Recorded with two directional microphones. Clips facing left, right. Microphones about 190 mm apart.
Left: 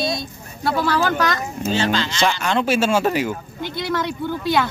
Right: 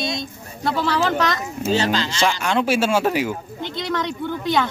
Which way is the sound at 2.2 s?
10° right (ahead or behind).